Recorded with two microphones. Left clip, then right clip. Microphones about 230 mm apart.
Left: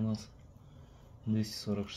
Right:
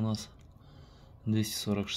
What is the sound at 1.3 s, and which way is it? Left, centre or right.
Speech, right.